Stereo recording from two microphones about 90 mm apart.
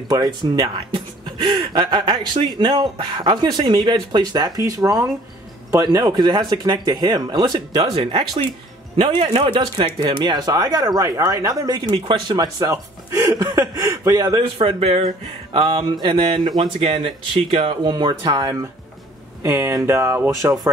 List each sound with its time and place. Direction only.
0.6 s speech: 65° right (ahead or behind); by 11.9 s 45° right (ahead or behind)
11.9 s speech: 60° right (ahead or behind)
13.1 s speech: 45° right (ahead or behind)
14.4 s speech: 85° right
15.5 s speech: 60° right (ahead or behind); by 17.9 s 85° right
17.9 s speech: 55° right (ahead or behind)
19.4 s speech: 30° right (ahead or behind)